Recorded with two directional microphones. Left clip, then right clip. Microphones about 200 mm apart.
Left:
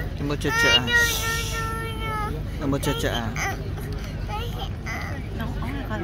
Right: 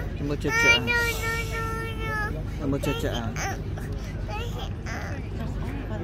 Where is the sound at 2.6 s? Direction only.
Centre (ahead or behind).